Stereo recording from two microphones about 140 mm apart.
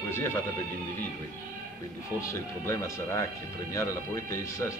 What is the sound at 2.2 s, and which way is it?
Speech, 20° left (ahead or behind).